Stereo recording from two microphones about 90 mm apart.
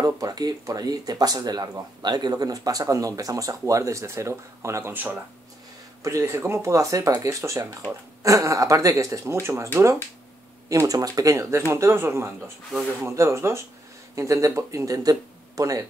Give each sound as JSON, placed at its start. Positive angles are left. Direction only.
{"t": 0.0, "sound": "speech", "side_deg": -45}
{"t": 10.7, "sound": "speech", "side_deg": -40}